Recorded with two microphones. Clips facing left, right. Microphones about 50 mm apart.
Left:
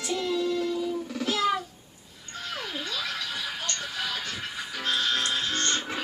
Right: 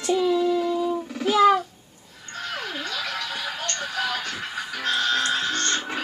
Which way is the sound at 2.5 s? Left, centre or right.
Right.